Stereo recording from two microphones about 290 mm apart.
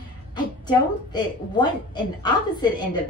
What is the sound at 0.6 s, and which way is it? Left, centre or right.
Speech, centre.